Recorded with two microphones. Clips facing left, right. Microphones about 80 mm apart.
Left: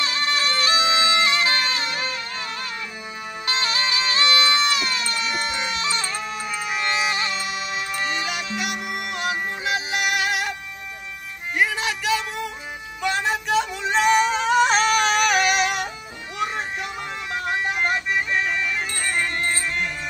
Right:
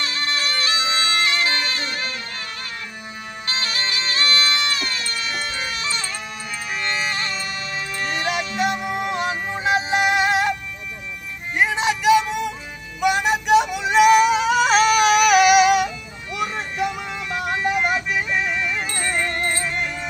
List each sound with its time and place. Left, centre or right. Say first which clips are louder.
0.0 s bagpipes: left 2 dB; centre
3.4 s music: left 2 dB; left
5.8 s bagpipes: left 2 dB; left
6.7 s music: left 1 dB; centre
9.6 s music: right 5 dB; right
11.5 s music: right 3 dB; right; by 15.9 s centre
17.5 s music: right 2 dB; centre